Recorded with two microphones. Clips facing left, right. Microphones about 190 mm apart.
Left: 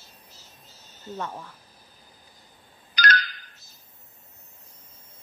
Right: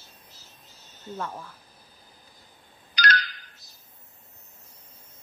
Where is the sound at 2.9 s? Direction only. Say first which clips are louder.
Left 1 dB; 50° left (ahead or behind).